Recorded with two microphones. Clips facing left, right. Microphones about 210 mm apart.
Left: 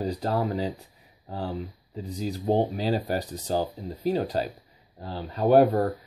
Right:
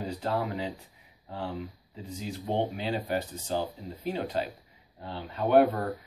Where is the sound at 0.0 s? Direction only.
40° left (ahead or behind).